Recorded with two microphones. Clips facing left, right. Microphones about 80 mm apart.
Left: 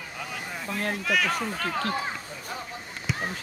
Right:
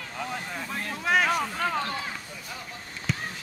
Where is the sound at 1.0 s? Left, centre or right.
Right.